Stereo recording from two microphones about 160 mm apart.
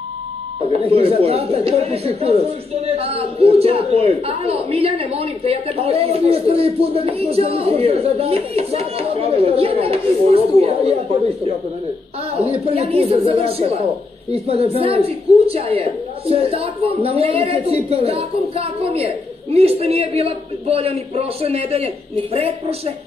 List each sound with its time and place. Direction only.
0.7 s a woman's voice: 40° right (ahead or behind)